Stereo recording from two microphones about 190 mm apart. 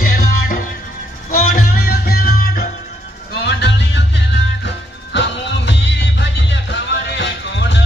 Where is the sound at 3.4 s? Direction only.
65° left (ahead or behind).